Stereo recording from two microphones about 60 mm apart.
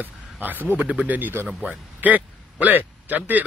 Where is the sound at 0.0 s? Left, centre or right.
Right.